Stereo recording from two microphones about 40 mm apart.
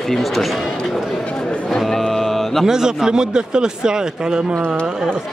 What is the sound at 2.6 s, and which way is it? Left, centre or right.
Speech, centre.